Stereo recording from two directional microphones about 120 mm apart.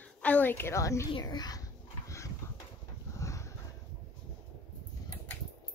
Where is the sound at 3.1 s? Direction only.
25° left (ahead or behind).